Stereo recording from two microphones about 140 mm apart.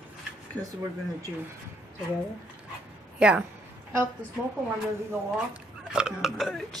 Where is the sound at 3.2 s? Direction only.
5° right (ahead or behind).